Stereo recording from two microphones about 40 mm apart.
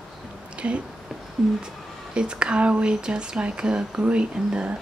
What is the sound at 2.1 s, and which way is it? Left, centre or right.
Speech, right.